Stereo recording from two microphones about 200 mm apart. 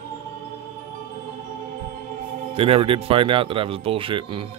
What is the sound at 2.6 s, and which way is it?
Speech, 25° right (ahead or behind).